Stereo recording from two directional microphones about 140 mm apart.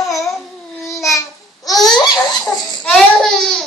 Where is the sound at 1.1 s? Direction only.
25° left (ahead or behind).